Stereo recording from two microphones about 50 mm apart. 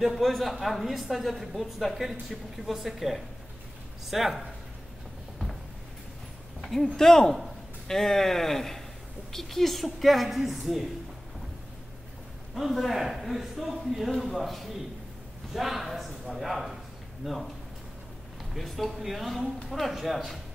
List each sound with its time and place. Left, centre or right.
0.0 s speech: centre
6.6 s a sound: centre
7.0 s speech: centre
12.5 s speech: centre